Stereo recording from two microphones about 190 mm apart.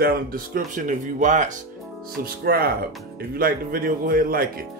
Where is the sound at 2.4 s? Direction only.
55° right (ahead or behind).